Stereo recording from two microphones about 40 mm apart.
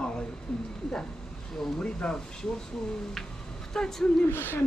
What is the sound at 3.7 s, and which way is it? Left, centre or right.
Speech, centre.